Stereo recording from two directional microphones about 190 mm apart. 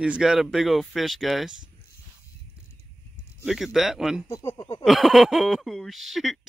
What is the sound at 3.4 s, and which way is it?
Speech, centre (ahead or behind).